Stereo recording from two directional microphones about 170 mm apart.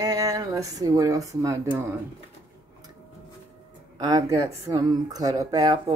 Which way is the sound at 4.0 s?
20° right (ahead or behind).